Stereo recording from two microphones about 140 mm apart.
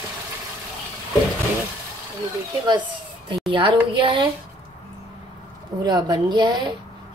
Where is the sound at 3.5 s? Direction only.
35° right (ahead or behind).